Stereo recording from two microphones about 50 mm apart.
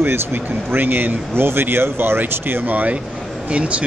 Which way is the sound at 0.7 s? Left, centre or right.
Right.